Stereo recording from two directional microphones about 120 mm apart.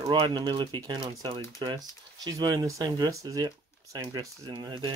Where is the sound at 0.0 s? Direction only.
40° right (ahead or behind).